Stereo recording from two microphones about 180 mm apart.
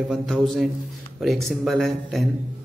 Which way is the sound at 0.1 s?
Centre (ahead or behind).